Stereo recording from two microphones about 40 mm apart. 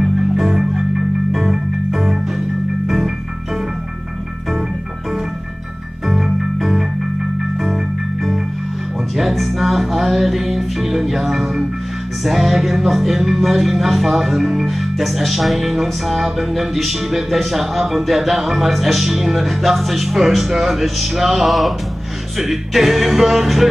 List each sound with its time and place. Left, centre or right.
0.0 s music: centre
6.0 s music: centre
9.1 s music: centre